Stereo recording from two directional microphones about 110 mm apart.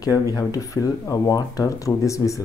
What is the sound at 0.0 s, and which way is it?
Speech, 35° left (ahead or behind).